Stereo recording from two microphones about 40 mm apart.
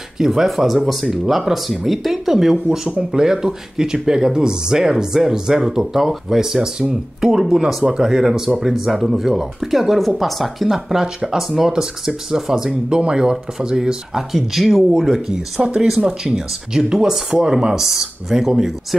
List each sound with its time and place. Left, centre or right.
0.2 s speech: centre
10.9 s speech: centre
14.3 s speech: centre
15.6 s speech: right
16.3 s speech: centre